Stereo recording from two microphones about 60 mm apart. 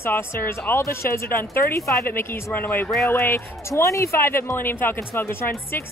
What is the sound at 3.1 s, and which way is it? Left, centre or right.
A woman's voice, left.